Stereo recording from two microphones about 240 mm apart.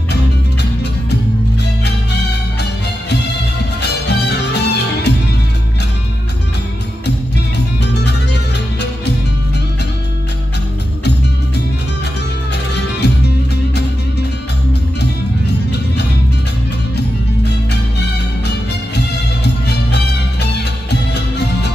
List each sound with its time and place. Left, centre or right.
3.8 s music: left
7.8 s music: left
13.0 s music: left
15.0 s music: left
19.4 s music: left